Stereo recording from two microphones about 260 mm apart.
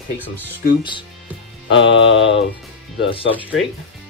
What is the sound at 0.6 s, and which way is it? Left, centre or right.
Speech, left.